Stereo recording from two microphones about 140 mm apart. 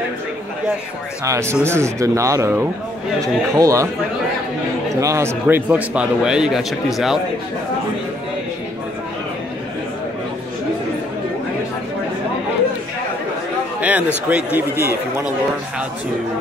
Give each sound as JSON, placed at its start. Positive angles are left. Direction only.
{"t": 1.2, "sound": "speech", "side_deg": -20}
{"t": 5.0, "sound": "a man's voice", "side_deg": -20}
{"t": 13.7, "sound": "a sound", "side_deg": -10}
{"t": 14.3, "sound": "a man's voice", "side_deg": -10}